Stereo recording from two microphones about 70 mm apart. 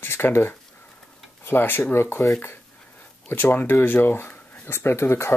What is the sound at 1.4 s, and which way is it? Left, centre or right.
Speech, left.